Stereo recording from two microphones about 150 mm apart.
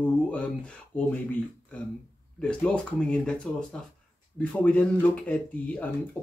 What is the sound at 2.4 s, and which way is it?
Speech, 5° left (ahead or behind).